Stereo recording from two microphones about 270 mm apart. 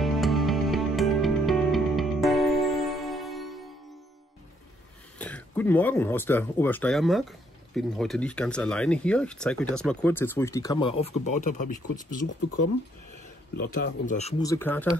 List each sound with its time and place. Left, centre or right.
0.0 s music: centre
5.2 s speech: centre; by 12.3 s left
13.6 s speech: left
14.4 s speech: centre